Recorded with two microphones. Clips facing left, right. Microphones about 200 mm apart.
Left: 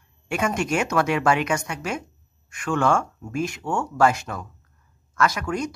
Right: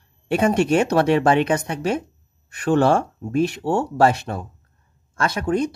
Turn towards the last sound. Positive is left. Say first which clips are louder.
# right 3 dB
turn(degrees=-30)  # may be behind; listen again after turning